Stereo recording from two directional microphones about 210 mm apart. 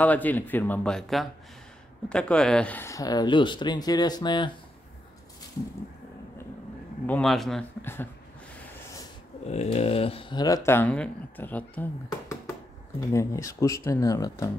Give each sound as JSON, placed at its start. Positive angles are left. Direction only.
{"t": 0.0, "sound": "speech", "side_deg": 10}
{"t": 7.1, "sound": "speech", "side_deg": 5}
{"t": 9.5, "sound": "speech", "side_deg": 30}